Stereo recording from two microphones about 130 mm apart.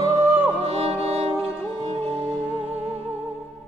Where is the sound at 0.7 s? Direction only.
50° right (ahead or behind).